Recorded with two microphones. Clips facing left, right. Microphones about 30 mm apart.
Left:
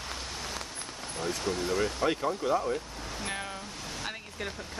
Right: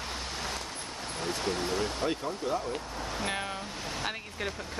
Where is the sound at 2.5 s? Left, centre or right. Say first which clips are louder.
Left 3 dB; left.